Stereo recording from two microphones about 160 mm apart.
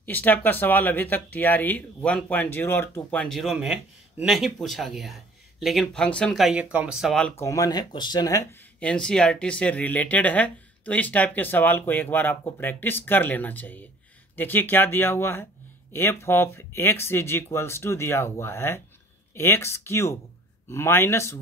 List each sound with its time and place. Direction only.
0.0 s speech: 10° left (ahead or behind)
7.3 s speech: 20° left (ahead or behind)